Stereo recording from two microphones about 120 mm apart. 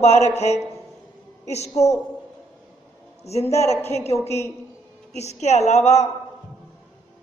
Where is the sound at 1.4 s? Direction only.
65° left (ahead or behind).